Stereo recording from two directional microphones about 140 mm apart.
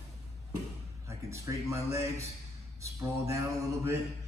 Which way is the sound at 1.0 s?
20° right (ahead or behind).